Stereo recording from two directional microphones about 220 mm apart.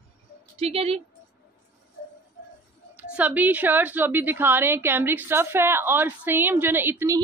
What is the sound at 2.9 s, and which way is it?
A woman's voice, 5° right (ahead or behind).